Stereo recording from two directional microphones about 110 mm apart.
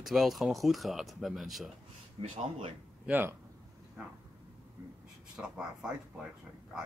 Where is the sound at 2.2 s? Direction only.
55° right (ahead or behind).